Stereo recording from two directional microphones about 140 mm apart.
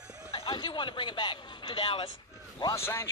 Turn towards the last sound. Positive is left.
turn(degrees=20)  # may be behind; listen again after turning